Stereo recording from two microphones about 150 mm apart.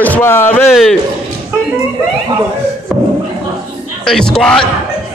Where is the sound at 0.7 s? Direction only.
Centre (ahead or behind).